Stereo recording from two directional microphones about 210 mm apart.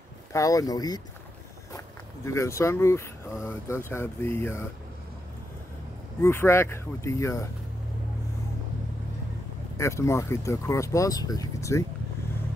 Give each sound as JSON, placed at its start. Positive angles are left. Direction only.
{"t": 0.3, "sound": "speech", "side_deg": 15}
{"t": 2.2, "sound": "speech", "side_deg": 15}
{"t": 6.2, "sound": "speech", "side_deg": 10}
{"t": 9.8, "sound": "speech", "side_deg": 15}